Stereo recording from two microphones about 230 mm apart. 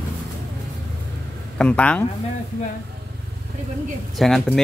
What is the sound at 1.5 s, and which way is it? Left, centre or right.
Speech, centre.